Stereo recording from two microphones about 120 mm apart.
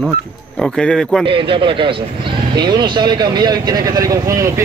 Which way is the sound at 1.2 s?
45° right (ahead or behind).